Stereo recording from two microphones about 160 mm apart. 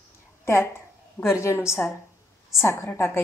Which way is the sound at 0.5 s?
15° left (ahead or behind).